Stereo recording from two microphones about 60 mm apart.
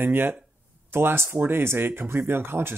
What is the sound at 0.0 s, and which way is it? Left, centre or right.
Speech, right.